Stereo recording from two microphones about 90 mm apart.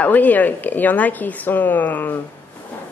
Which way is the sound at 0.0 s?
20° left (ahead or behind).